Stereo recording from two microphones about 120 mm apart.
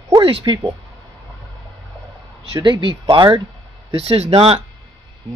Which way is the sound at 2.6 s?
45° right (ahead or behind).